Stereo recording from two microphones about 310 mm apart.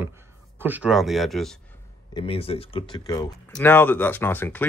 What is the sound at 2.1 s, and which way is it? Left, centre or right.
Speech, centre.